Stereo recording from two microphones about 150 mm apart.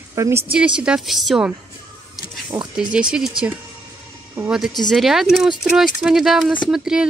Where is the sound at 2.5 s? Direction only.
40° right (ahead or behind).